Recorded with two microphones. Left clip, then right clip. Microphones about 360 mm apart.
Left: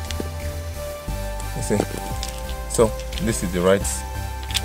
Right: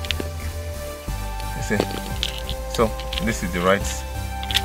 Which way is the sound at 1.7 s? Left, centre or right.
Centre.